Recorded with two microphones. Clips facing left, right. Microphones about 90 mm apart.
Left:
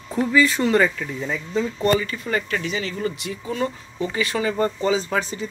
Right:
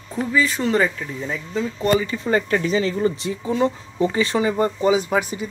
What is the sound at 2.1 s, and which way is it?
Speech, 30° right (ahead or behind).